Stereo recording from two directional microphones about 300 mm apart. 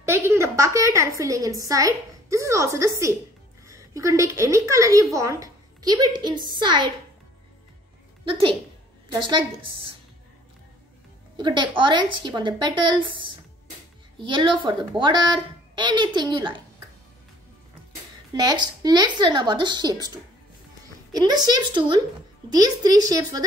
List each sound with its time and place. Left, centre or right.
0.0 s a woman's voice: centre
8.3 s a woman's voice: centre
11.3 s a woman's voice: centre
18.3 s a woman's voice: centre